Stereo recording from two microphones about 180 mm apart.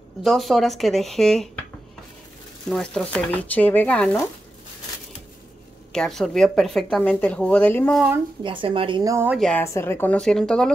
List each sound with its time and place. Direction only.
0.2 s speech: centre (ahead or behind)
2.7 s speech: 5° left (ahead or behind)
5.9 s speech: 5° left (ahead or behind)
8.4 s a woman's voice: 30° right (ahead or behind)
9.4 s speech: 10° left (ahead or behind)